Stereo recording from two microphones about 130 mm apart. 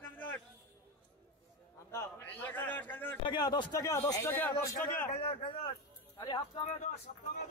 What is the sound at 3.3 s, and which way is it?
A man's voice, 35° left (ahead or behind).